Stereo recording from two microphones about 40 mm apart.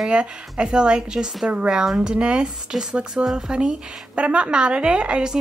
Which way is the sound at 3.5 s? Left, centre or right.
Right.